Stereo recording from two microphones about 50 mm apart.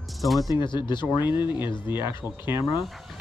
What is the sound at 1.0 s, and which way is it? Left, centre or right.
Speech, right.